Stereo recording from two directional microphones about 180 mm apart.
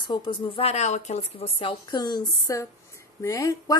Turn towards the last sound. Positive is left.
turn(degrees=15)  # may be behind; listen again after turning